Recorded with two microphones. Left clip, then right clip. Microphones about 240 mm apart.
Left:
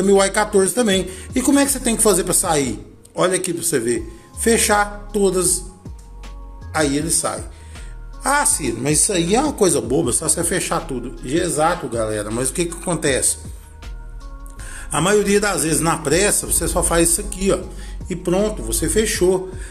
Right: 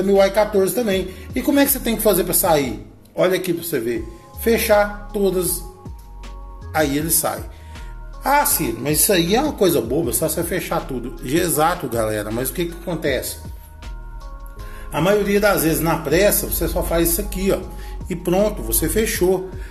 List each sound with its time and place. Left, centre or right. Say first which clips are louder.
0.0 s a man's voice: even; left
6.7 s music: even; centre
8.3 s speech: right 1 dB; centre
11.2 s a man's voice: even; centre
12.8 s a man's voice: left 3 dB; left
14.7 s a man's voice: even; left